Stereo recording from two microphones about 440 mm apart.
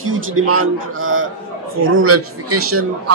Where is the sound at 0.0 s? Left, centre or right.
Right.